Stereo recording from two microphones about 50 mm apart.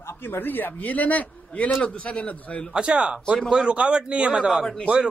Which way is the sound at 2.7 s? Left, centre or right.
Right.